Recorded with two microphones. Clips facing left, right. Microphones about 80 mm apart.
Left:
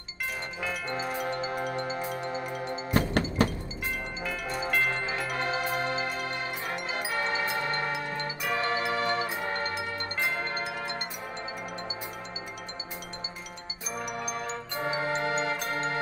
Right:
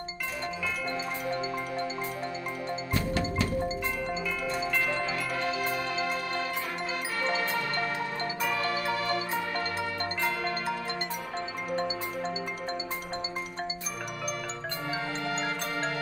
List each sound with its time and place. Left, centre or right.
2.9 s music: left
4.9 s music: left
7.3 s music: left
14.9 s music: left